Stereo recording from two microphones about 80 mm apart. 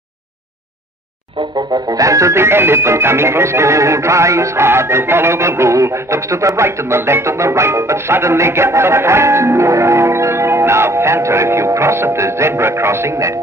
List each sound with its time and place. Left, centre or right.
1.7 s speech: right